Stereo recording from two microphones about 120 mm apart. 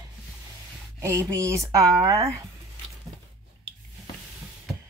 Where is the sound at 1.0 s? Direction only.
25° right (ahead or behind).